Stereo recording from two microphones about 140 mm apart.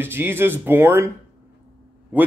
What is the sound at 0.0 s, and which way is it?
Speech, 15° right (ahead or behind).